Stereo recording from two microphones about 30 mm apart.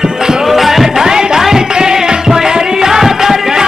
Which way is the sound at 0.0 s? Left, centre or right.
Centre.